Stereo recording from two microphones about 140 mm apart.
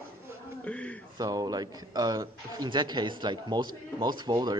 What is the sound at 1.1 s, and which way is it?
A man's voice, 30° right (ahead or behind).